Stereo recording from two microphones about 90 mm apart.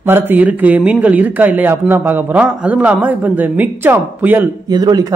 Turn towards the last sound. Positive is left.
turn(degrees=-50)  # may be behind; listen again after turning